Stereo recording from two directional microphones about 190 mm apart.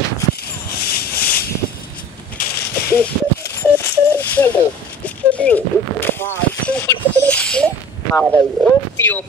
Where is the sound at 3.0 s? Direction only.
10° left (ahead or behind).